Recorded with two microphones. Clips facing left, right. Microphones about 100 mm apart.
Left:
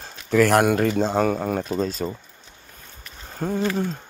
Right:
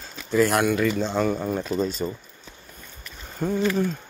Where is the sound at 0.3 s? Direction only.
60° left (ahead or behind).